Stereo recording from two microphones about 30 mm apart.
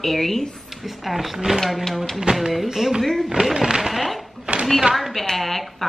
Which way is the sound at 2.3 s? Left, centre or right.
Right.